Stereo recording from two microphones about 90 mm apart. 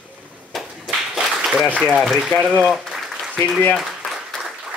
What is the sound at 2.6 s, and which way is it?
Applause, centre (ahead or behind).